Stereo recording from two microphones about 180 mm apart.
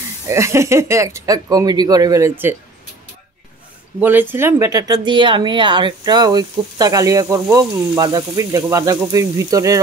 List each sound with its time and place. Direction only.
0.3 s speech: 15° right (ahead or behind)
4.0 s speech: 10° right (ahead or behind)